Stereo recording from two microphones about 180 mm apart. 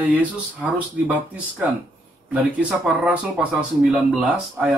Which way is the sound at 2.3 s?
10° right (ahead or behind).